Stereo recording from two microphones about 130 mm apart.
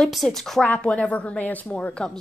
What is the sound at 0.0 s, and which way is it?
Speech, centre (ahead or behind).